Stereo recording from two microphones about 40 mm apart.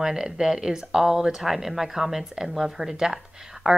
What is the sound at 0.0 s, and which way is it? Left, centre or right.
A woman's voice, centre.